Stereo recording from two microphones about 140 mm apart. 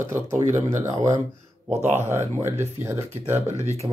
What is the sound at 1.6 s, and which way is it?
Speech, 10° right (ahead or behind).